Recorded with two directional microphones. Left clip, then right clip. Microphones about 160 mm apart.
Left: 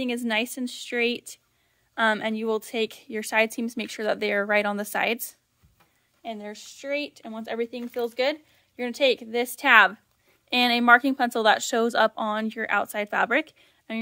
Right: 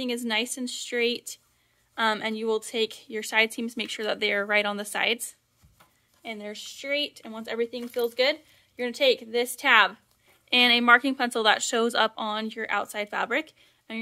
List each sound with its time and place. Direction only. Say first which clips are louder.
0.0 s a woman's voice: left 1 dB; 40° left (ahead or behind)
10.5 s a woman's voice: even; 40° left (ahead or behind)